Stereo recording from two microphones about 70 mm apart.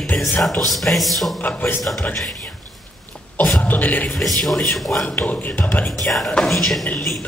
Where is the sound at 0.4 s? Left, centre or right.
Centre.